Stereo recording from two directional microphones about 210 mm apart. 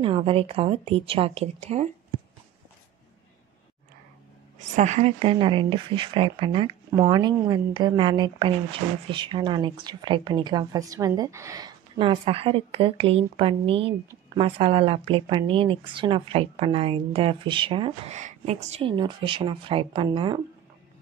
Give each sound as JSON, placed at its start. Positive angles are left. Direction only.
{"t": 0.0, "sound": "a woman's voice", "side_deg": -25}
{"t": 4.6, "sound": "a woman's voice", "side_deg": -35}